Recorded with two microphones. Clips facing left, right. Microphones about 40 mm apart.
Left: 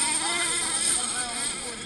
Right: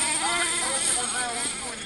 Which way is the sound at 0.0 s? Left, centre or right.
Right.